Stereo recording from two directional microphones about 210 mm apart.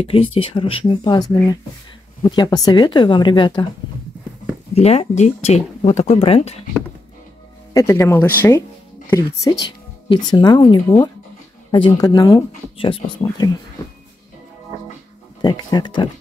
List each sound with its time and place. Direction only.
0.0 s speech: 25° left (ahead or behind)
4.7 s speech: 30° left (ahead or behind)
7.7 s speech: 15° left (ahead or behind)
15.4 s speech: 20° left (ahead or behind)